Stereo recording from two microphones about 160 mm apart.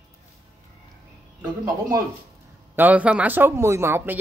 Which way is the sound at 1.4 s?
20° right (ahead or behind).